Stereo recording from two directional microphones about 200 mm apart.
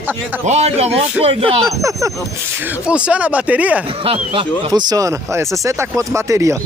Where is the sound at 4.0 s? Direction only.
25° right (ahead or behind).